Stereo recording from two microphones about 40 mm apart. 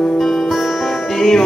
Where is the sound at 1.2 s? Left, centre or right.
Centre.